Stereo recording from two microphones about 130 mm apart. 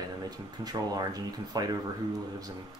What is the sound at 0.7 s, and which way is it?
Speech, 30° right (ahead or behind).